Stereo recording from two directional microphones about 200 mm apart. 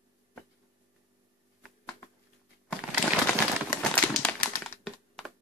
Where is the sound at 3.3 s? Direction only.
10° left (ahead or behind).